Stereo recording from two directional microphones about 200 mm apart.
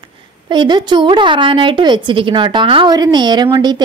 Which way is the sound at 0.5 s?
20° right (ahead or behind).